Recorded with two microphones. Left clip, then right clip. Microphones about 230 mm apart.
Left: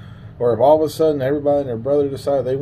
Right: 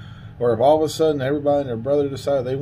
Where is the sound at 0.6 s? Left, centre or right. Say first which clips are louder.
Left 3 dB; right.